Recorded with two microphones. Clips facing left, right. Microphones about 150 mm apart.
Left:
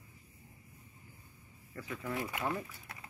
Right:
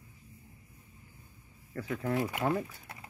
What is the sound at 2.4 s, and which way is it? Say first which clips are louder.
Speech: right 6 dB; 30° right (ahead or behind).